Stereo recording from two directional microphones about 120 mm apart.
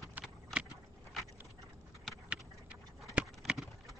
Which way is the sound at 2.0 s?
5° right (ahead or behind).